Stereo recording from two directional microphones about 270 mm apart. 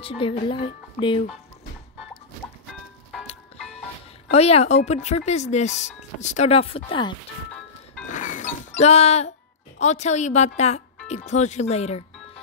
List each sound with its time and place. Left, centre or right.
0.0 s speech: left
4.3 s speech: left
8.1 s music: left
9.8 s speech: left